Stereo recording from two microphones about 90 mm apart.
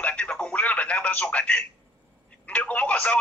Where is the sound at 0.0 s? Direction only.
15° left (ahead or behind).